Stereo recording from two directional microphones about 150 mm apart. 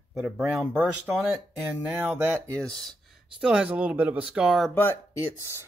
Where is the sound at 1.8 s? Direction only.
10° right (ahead or behind).